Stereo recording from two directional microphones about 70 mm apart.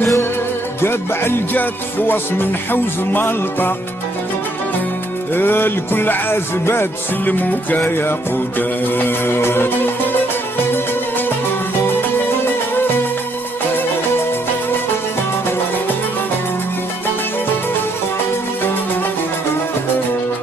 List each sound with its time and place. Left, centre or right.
0.0 s music: left
5.3 s music: left
10.7 s music: left